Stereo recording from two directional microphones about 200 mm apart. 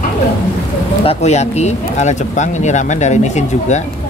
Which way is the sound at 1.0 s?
35° left (ahead or behind).